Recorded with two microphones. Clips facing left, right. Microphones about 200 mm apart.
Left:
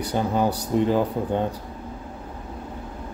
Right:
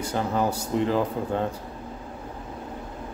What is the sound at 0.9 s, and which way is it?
Speech, 15° left (ahead or behind).